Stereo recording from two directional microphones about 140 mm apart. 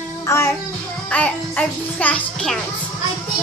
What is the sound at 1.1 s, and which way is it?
Speech, 10° left (ahead or behind).